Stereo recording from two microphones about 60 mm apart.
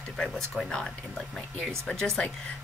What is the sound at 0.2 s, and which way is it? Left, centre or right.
Speech, centre.